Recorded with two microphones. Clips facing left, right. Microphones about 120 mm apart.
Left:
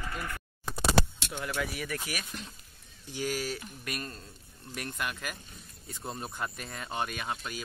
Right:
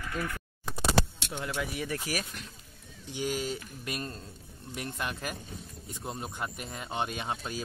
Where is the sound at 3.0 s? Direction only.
20° right (ahead or behind).